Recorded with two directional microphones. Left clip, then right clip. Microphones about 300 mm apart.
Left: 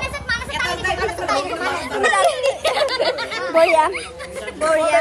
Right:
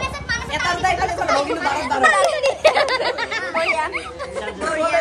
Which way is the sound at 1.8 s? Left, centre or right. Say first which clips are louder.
Right 1 dB; right.